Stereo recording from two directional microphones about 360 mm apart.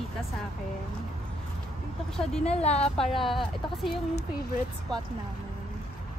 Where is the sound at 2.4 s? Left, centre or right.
Centre.